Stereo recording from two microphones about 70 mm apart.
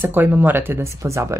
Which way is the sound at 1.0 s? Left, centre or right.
Right.